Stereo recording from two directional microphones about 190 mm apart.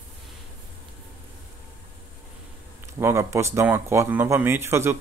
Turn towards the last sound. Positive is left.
turn(degrees=-15)  # may be behind; listen again after turning